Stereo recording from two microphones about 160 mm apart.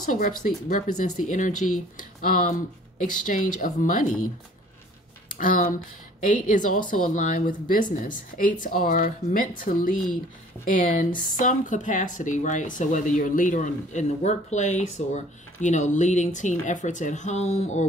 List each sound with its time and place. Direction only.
0.0 s speech: 55° left (ahead or behind)
5.4 s speech: 60° left (ahead or behind)